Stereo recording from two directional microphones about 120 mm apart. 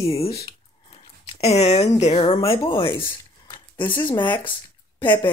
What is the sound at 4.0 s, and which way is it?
Speech, 40° left (ahead or behind).